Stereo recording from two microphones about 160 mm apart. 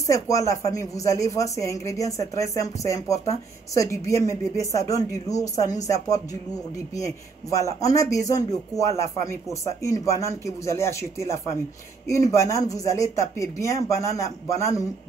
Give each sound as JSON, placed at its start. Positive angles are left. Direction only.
{"t": 0.0, "sound": "speech", "side_deg": 20}